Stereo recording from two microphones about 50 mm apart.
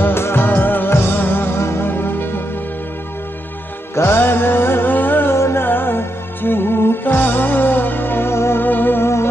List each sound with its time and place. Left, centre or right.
0.0 s music of bollywood: left
0.9 s music: left
1.6 s music: left
1.9 s music: left
3.9 s music: left
5.3 s music: left
5.7 s music: left
8.6 s music: left